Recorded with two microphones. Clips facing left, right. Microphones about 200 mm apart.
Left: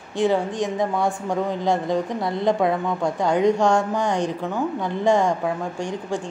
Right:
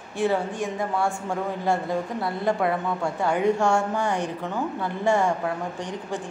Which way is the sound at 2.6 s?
15° left (ahead or behind).